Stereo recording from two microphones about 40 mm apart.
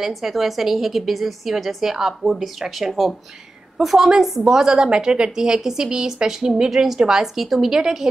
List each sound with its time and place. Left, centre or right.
0.1 s a woman's voice: centre